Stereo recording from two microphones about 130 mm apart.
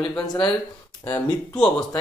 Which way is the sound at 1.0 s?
15° left (ahead or behind).